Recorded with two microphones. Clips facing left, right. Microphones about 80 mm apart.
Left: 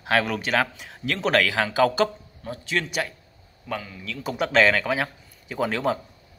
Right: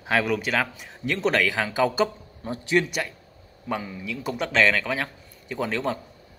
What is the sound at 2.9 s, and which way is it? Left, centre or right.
Speech, centre.